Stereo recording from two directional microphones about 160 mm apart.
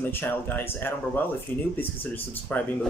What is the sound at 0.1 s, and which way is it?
Speech, 10° left (ahead or behind).